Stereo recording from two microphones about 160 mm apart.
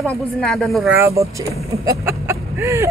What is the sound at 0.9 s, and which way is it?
Speech, 20° right (ahead or behind).